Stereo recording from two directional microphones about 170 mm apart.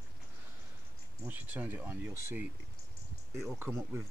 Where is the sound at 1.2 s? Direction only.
10° right (ahead or behind).